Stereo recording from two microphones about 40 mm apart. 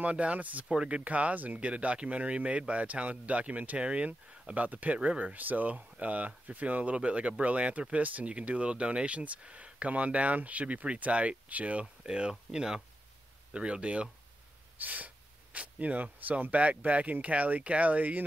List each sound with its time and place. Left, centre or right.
0.0 s speech: right
0.7 s speech: right
1.0 s speech: right
5.4 s speech: right; by 12.8 s centre
13.5 s speech: right
14.8 s speech: right